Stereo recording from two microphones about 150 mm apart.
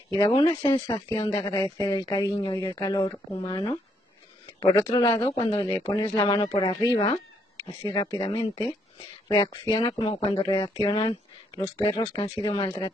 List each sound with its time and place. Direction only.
0.2 s speech: 35° left (ahead or behind)